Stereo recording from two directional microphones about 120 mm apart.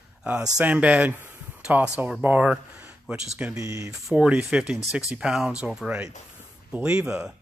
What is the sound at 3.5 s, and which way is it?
Speech, 25° right (ahead or behind).